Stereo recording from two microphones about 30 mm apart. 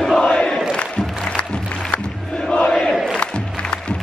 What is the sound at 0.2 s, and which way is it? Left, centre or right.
Crowd, left.